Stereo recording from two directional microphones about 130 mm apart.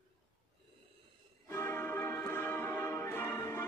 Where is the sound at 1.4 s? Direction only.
20° left (ahead or behind).